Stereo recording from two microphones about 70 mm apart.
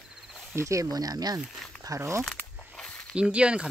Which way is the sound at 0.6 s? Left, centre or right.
Right.